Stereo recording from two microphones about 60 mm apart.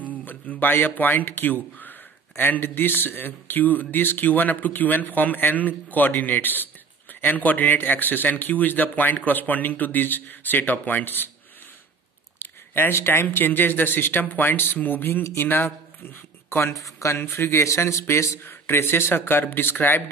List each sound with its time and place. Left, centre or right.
0.2 s speech: left
12.4 s speech: left